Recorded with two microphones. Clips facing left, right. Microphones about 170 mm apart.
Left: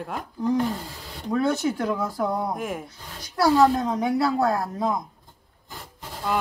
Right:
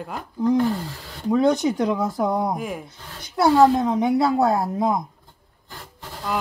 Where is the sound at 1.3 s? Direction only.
15° right (ahead or behind).